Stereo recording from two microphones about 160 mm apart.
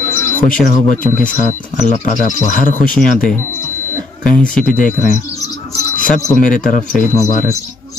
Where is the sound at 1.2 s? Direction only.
50° left (ahead or behind).